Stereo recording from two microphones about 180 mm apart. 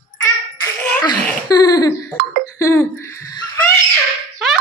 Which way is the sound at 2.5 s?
15° left (ahead or behind).